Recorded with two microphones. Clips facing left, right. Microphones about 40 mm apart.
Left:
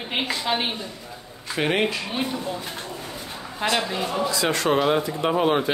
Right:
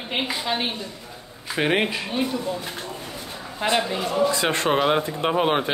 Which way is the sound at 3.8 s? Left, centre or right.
Centre.